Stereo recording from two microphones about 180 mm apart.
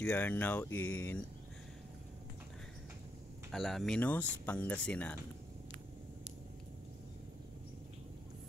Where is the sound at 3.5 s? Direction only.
Centre (ahead or behind).